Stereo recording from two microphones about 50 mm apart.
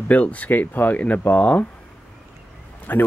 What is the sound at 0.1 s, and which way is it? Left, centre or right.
Speech, left.